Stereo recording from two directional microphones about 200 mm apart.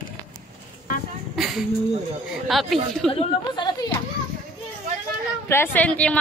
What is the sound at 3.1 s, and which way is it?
Speech, 25° left (ahead or behind).